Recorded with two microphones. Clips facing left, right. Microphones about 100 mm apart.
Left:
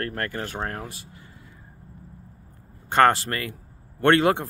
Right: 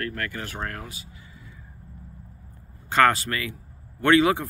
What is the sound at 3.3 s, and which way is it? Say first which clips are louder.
Speech: even; 35° left (ahead or behind).